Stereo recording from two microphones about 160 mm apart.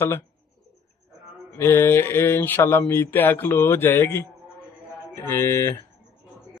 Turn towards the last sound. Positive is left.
turn(degrees=15)  # may be behind; listen again after turning